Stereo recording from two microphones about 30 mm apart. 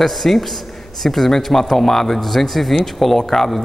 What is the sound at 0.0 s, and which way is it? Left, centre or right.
A man's voice, centre.